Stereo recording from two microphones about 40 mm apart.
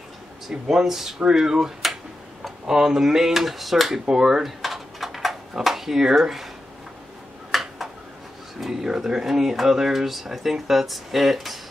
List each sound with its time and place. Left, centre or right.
0.5 s speech: centre
4.1 s door: centre
5.6 s speech: centre
7.5 s a sound: centre
8.5 s speech: centre